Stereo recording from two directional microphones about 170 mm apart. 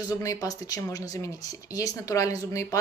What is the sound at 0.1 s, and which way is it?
A woman's voice, 20° left (ahead or behind).